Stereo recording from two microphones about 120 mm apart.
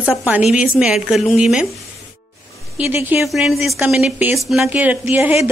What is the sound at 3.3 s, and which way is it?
A woman's voice, 5° right (ahead or behind).